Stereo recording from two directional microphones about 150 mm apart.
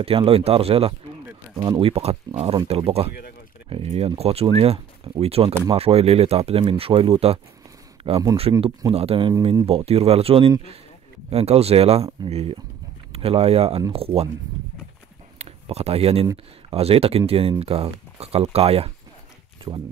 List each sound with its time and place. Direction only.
0.0 s speech: 40° right (ahead or behind)
15.3 s a sound: 40° right (ahead or behind)
16.7 s speech: 40° right (ahead or behind)
19.7 s speech: 25° right (ahead or behind)